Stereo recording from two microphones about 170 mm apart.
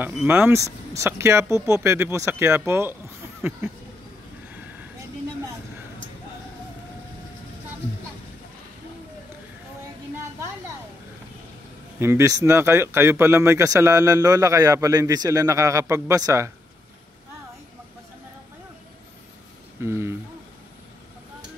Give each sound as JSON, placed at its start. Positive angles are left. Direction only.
{"t": 0.0, "sound": "speech", "side_deg": -10}
{"t": 12.0, "sound": "speech", "side_deg": -15}
{"t": 19.8, "sound": "speech", "side_deg": -15}